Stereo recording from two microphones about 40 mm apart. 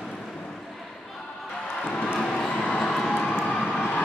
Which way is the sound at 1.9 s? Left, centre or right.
Left.